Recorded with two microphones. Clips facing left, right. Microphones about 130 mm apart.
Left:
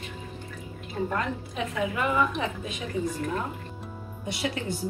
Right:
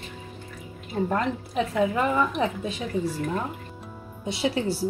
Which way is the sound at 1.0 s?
30° right (ahead or behind).